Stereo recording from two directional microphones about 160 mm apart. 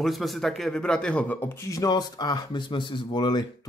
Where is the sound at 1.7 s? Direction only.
25° left (ahead or behind).